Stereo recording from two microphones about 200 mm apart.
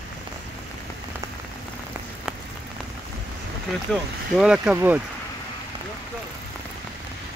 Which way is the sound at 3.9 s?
5° right (ahead or behind).